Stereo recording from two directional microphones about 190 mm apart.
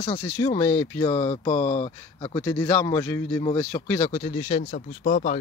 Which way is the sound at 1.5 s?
40° left (ahead or behind).